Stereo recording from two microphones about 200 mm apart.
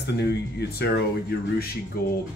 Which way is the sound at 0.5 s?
50° left (ahead or behind).